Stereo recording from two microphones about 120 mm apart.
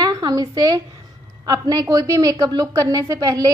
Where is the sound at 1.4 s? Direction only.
30° right (ahead or behind).